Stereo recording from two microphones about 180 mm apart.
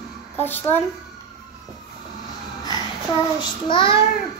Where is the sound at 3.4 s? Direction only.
30° left (ahead or behind).